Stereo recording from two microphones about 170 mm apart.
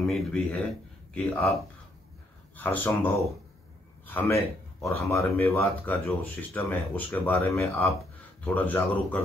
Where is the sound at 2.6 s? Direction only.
10° left (ahead or behind).